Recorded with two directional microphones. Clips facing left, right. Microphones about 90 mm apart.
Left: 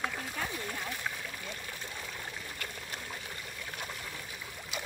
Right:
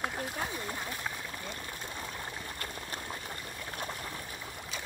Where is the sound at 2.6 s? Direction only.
35° right (ahead or behind).